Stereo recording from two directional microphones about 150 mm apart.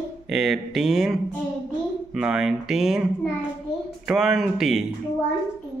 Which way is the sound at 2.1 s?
5° right (ahead or behind).